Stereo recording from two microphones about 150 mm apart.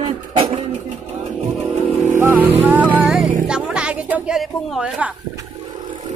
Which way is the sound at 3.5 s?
5° right (ahead or behind).